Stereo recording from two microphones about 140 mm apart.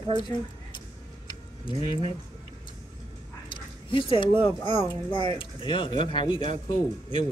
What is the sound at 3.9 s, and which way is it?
Speech, 35° left (ahead or behind).